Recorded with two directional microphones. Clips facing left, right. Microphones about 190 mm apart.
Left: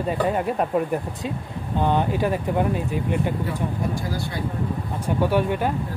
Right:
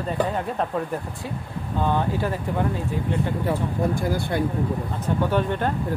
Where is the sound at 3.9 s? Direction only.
55° right (ahead or behind).